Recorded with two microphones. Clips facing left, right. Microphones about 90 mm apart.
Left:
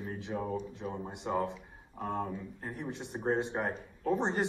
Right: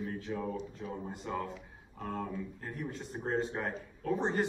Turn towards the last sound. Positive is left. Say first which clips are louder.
# left 1 dB
turn(degrees=25)  # may be behind; listen again after turning